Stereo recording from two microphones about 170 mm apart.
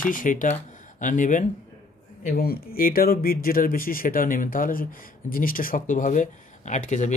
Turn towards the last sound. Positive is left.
turn(degrees=45)  # may be behind; listen again after turning